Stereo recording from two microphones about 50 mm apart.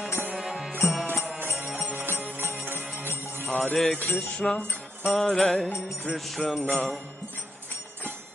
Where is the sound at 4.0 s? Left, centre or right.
Left.